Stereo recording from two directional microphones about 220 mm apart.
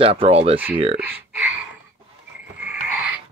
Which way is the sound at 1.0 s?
10° right (ahead or behind).